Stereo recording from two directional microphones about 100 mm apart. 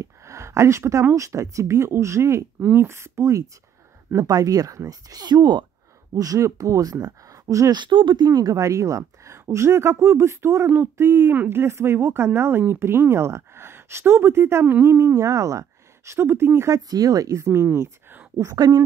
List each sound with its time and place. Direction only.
0.0 s a woman's voice: 30° right (ahead or behind); by 5.7 s 50° right (ahead or behind)
6.1 s speech: 35° right (ahead or behind)
7.7 s speech: 50° right (ahead or behind)
8.3 s a woman's voice: 35° right (ahead or behind)